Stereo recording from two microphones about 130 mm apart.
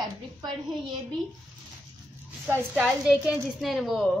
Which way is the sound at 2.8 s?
5° right (ahead or behind).